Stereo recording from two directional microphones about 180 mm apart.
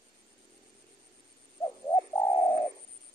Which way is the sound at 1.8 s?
15° left (ahead or behind).